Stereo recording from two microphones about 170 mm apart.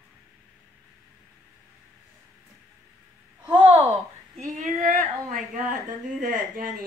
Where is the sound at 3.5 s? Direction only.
35° right (ahead or behind).